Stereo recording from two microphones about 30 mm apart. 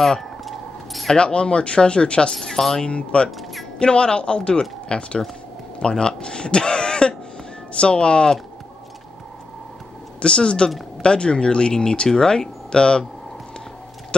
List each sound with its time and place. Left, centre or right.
1.1 s speech: left
2.6 s speech: left
2.9 s speech: left
3.3 s music: centre
3.8 s speech: left
10.2 s speech: left